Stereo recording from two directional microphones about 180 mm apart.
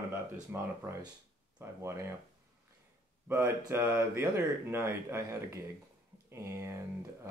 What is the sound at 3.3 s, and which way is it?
Speech, 15° right (ahead or behind).